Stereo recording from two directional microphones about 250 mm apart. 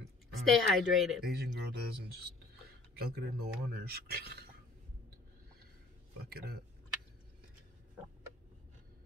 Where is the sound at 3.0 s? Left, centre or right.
Right.